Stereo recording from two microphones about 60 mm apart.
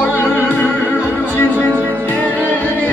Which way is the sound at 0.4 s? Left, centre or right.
Left.